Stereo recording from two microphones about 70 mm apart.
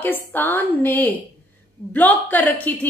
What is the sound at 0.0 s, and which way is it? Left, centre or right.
A woman's voice, left.